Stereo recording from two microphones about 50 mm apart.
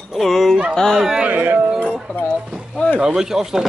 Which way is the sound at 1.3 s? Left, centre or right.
Right.